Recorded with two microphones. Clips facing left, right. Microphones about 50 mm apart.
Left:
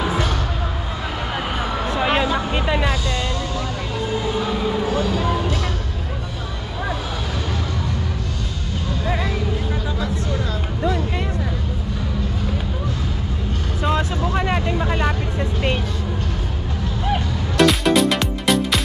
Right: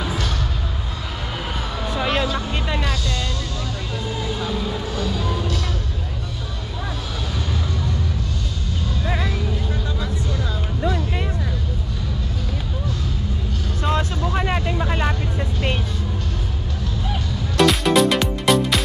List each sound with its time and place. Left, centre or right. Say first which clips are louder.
0.0 s basketball bounce: left 4 dB; centre
2.0 s music: left 2 dB; centre
4.3 s music: left 3 dB; left
9.0 s a sound: left 2 dB; centre
13.8 s vehicle: left 2 dB; centre
17.6 s music: even; centre